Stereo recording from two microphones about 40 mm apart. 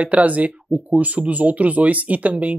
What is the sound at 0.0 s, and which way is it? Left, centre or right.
A woman's voice, right.